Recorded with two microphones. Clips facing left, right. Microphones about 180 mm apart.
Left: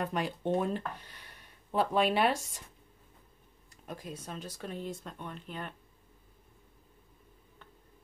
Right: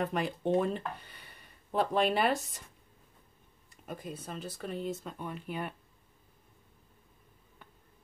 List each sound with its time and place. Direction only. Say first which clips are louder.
0.0 s speech: right 1 dB; centre (ahead or behind)
3.8 s speech: right 1 dB; centre (ahead or behind)